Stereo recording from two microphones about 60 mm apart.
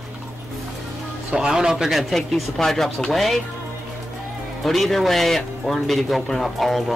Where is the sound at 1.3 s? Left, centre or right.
Centre.